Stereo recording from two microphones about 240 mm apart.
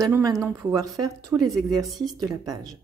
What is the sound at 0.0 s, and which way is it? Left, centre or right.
Speech, centre.